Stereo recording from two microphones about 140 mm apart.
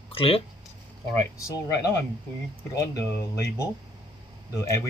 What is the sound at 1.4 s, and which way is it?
Speech, 20° left (ahead or behind).